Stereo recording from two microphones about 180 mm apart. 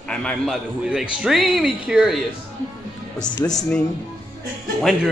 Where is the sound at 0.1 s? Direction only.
5° left (ahead or behind).